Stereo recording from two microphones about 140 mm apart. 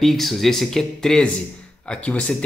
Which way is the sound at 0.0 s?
Centre (ahead or behind).